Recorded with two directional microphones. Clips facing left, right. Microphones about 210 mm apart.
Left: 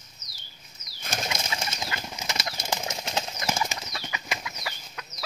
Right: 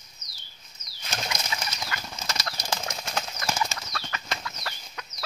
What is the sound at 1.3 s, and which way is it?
Bird flight, 25° left (ahead or behind).